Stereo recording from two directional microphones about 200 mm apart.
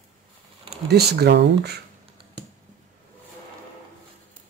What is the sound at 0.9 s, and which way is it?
Speech, 55° right (ahead or behind).